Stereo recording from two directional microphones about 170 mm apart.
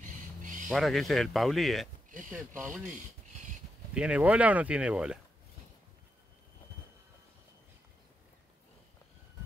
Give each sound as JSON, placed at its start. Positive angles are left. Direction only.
{"t": 0.4, "sound": "a sound", "side_deg": -50}
{"t": 0.7, "sound": "speech", "side_deg": 0}
{"t": 2.5, "sound": "speech", "side_deg": -15}
{"t": 3.9, "sound": "speech", "side_deg": -5}